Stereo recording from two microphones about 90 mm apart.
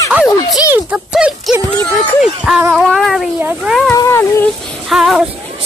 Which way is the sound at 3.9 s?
35° left (ahead or behind).